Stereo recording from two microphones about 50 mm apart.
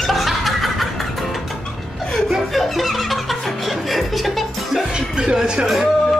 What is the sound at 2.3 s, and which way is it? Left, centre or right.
Music, centre.